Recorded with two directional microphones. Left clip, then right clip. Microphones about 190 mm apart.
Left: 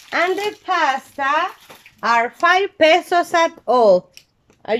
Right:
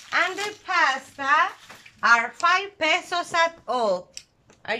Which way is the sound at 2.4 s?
40° left (ahead or behind).